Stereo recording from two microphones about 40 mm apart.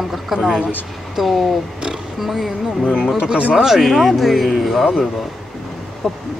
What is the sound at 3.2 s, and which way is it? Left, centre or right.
Speech, right.